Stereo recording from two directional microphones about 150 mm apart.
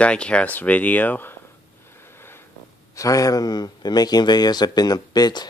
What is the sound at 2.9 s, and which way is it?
Speech, 20° left (ahead or behind).